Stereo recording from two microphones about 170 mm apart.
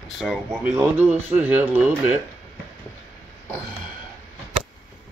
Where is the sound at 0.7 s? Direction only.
10° right (ahead or behind).